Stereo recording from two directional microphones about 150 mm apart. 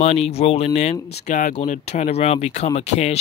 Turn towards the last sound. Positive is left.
turn(degrees=45)  # may be behind; listen again after turning